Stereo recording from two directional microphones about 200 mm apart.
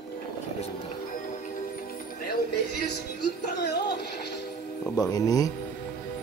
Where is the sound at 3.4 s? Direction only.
55° left (ahead or behind).